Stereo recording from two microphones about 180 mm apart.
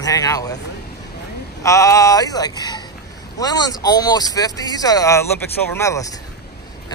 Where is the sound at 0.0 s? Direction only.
20° left (ahead or behind).